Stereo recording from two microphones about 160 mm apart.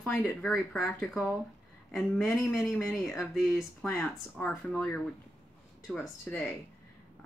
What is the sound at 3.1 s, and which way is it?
Speech, 15° left (ahead or behind).